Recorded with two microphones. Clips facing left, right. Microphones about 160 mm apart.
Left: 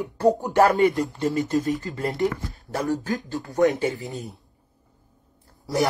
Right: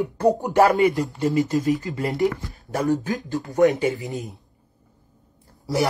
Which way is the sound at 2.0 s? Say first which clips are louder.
Right 2 dB; centre (ahead or behind).